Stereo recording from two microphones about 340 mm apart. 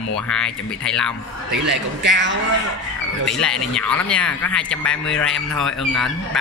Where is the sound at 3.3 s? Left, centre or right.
Centre.